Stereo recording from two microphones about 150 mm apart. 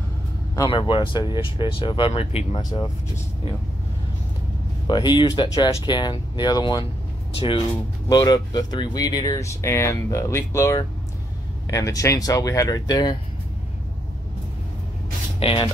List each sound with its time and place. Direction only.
0.7 s speech: 30° left (ahead or behind)
4.8 s speech: 30° left (ahead or behind)
15.3 s speech: 35° left (ahead or behind)